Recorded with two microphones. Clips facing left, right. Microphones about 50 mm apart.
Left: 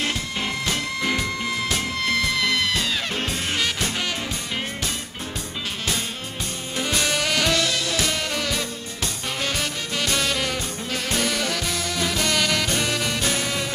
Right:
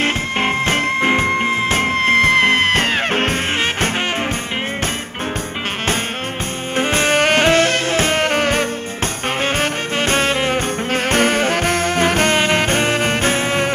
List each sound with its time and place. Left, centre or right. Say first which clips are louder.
0.0 s music: right 8 dB; right
6.8 s music: right 8 dB; right